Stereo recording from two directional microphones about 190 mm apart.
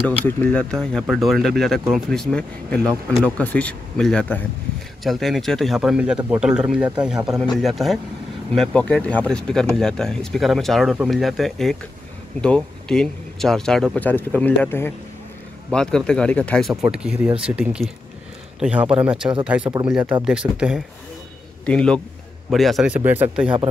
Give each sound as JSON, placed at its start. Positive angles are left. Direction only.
{"t": 0.3, "sound": "speech", "side_deg": 10}
{"t": 19.6, "sound": "speech", "side_deg": -25}
{"t": 19.9, "sound": "speech", "side_deg": -5}